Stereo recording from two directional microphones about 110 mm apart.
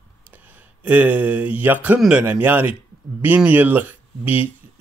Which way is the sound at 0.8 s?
15° right (ahead or behind).